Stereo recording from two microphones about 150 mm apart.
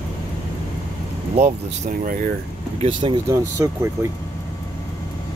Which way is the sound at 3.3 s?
20° right (ahead or behind).